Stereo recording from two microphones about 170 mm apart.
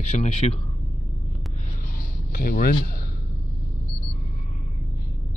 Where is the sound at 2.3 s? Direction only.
60° left (ahead or behind).